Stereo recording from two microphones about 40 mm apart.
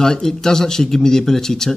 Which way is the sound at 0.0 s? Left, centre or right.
Centre.